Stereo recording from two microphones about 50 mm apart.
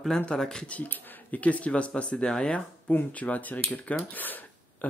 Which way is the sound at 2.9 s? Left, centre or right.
Left.